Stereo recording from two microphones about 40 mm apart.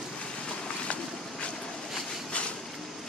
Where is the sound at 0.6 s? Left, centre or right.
Left.